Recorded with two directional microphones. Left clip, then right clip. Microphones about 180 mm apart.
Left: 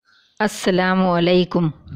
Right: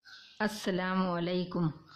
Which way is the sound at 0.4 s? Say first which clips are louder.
Left 14 dB; 55° left (ahead or behind).